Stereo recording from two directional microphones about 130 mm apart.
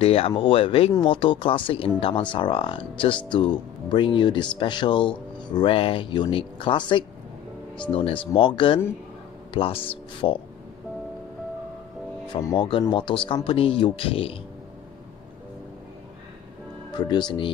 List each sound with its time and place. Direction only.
0.0 s speech: 50° left (ahead or behind)
12.5 s speech: 40° left (ahead or behind)
16.9 s speech: 35° left (ahead or behind)